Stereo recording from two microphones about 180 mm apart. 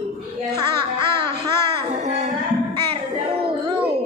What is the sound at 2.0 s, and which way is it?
Music, 40° right (ahead or behind).